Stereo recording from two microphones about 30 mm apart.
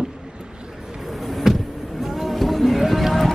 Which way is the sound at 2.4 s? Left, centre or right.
Centre.